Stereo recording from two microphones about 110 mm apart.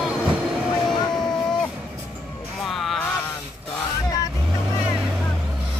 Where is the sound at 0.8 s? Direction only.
5° left (ahead or behind).